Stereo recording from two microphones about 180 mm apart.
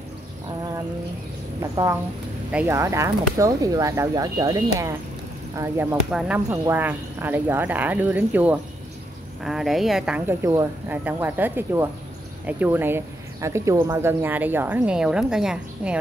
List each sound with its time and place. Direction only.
1.6 s a woman's voice: 15° right (ahead or behind)